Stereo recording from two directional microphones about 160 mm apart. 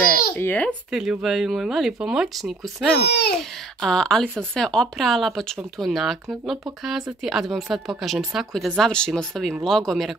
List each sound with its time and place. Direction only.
0.4 s speech: 10° left (ahead or behind)
0.9 s speech: centre (ahead or behind)
3.1 s speech: 90° left
3.8 s speech: 5° left (ahead or behind)